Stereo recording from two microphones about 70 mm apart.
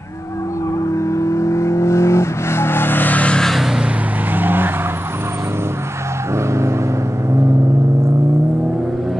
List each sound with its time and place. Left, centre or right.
0.8 s vehicle: left
3.3 s vehicle: centre
4.4 s vehicle: right
6.3 s vehicle: right